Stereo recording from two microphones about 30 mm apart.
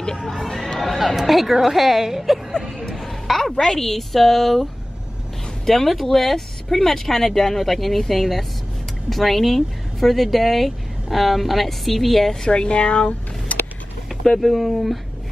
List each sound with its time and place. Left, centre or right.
0.2 s speech: centre
2.8 s a sound: centre
3.5 s speech: centre
5.7 s speech: centre
12.4 s speech: left
13.5 s a sound: left
14.4 s speech: centre